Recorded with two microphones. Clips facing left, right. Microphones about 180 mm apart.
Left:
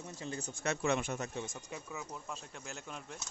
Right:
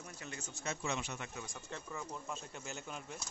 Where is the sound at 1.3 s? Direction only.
25° left (ahead or behind).